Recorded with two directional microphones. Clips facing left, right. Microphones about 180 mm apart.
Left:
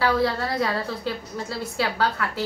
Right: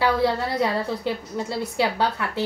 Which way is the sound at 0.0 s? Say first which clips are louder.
Right 1 dB; 20° right (ahead or behind).